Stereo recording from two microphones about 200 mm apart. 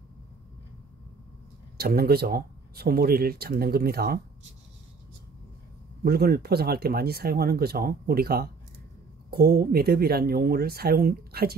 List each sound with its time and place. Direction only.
1.8 s speech: 50° right (ahead or behind)
6.0 s speech: 50° right (ahead or behind)